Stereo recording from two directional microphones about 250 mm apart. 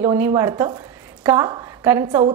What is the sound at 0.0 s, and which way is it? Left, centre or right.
A woman's voice, centre.